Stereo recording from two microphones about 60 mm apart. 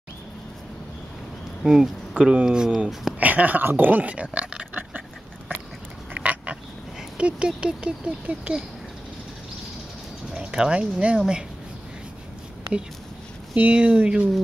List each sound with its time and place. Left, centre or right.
1.6 s speech: centre
3.2 s speech: right
6.1 s a sound: right
7.2 s speech: centre
10.3 s speech: centre
13.6 s speech: centre